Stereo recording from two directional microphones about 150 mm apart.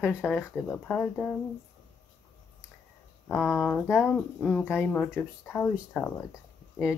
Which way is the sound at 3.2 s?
10° left (ahead or behind).